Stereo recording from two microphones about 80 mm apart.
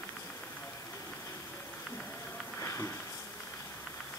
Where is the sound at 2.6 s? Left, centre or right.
Left.